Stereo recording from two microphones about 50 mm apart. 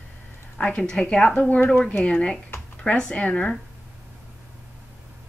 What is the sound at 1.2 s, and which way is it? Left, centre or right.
Speech, left.